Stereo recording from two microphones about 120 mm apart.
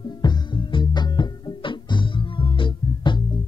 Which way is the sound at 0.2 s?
40° left (ahead or behind).